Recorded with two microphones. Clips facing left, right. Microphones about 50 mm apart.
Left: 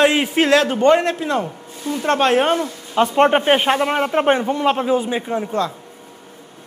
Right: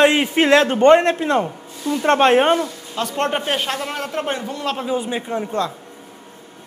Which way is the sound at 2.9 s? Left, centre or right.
Left.